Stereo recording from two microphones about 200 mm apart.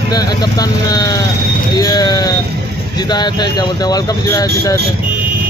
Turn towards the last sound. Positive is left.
turn(degrees=15)  # may be behind; listen again after turning